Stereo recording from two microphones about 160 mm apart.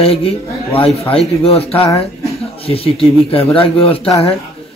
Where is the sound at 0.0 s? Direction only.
40° left (ahead or behind).